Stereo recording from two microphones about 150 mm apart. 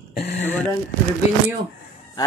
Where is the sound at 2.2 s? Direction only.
25° left (ahead or behind).